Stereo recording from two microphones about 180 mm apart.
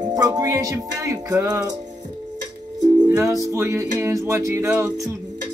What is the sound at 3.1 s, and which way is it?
Music, 15° right (ahead or behind).